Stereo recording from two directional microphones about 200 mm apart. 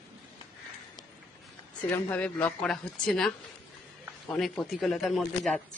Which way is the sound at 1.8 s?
5° left (ahead or behind).